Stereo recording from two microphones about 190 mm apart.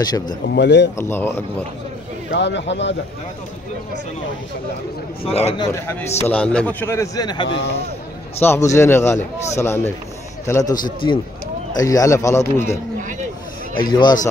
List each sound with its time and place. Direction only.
0.0 s a man's voice: 20° left (ahead or behind)
0.6 s speech: 65° left (ahead or behind)
0.9 s a man's voice: 10° left (ahead or behind)
2.3 s speech: 65° left (ahead or behind)
5.2 s a man's voice: 35° left (ahead or behind)
5.7 s a man's voice: 10° left (ahead or behind)
7.4 s a man's voice: 85° left
8.4 s a man's voice: 15° left (ahead or behind)